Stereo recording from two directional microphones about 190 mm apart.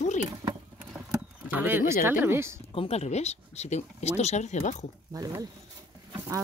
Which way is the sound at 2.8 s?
35° left (ahead or behind).